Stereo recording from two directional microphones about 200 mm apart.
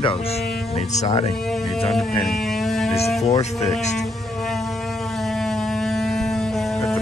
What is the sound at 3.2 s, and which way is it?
Speech, 35° left (ahead or behind).